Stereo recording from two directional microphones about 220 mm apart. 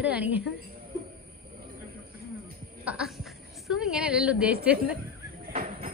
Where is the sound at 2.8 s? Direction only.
5° right (ahead or behind).